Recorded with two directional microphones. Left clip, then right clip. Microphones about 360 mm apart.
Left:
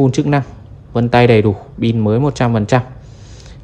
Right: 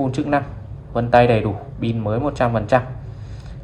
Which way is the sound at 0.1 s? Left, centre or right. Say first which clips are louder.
Left 3 dB; left.